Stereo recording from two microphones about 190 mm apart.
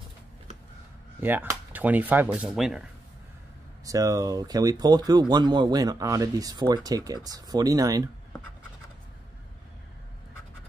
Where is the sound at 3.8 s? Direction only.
20° right (ahead or behind).